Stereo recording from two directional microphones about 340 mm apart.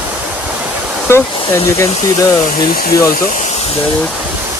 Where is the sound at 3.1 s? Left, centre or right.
Left.